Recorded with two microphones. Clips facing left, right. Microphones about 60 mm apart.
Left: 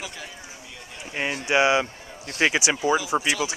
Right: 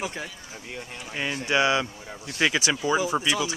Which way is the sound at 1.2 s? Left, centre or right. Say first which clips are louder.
Left 2 dB; left.